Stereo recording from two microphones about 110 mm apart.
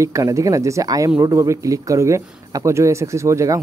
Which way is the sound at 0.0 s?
30° right (ahead or behind).